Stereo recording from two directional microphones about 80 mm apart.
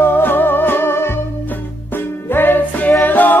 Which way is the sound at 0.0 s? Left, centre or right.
Left.